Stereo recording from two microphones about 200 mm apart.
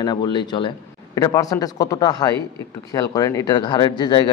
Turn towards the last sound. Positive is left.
turn(degrees=20)  # may be behind; listen again after turning